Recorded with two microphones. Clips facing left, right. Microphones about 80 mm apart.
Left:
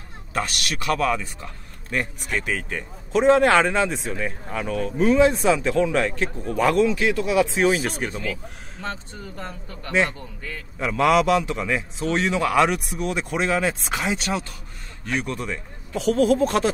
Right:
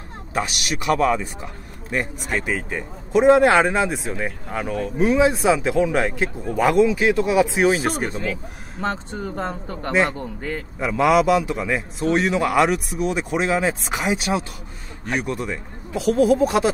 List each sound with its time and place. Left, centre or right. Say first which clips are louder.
0.3 s a man's voice: right 2 dB; centre
7.1 s speech: right 3 dB; right
7.4 s speech: right 2 dB; centre
8.1 s speech: right 3 dB; right
10.8 s a man's voice: right 1 dB; centre